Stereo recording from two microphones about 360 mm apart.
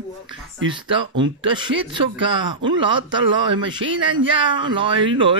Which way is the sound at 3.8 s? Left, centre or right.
Right.